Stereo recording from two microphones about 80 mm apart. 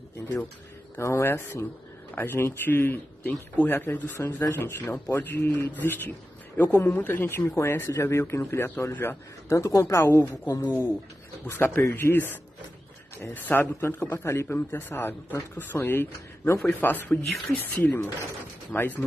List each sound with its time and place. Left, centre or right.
0.9 s speech: left
11.4 s speech: left